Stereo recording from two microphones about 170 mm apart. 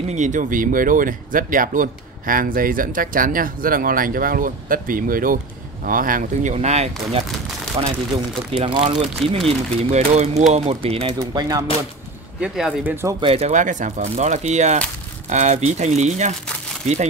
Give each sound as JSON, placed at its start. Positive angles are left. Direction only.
{"t": 0.1, "sound": "speech", "side_deg": -45}
{"t": 12.4, "sound": "speech", "side_deg": -5}
{"t": 13.2, "sound": "speech", "side_deg": -35}